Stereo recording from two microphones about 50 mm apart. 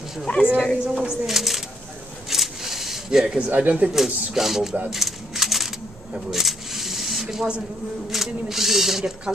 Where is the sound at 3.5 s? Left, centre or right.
Right.